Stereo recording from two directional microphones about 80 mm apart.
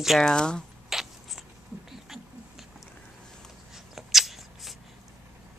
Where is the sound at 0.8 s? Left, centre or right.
Centre.